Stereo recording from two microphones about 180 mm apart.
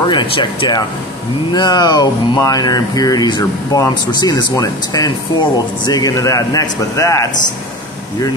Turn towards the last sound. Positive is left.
turn(degrees=15)  # may be behind; listen again after turning